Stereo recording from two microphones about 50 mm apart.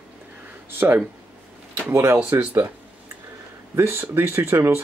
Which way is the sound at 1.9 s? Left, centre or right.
Right.